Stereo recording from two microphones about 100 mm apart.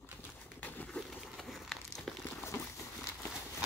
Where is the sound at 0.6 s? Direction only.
15° left (ahead or behind).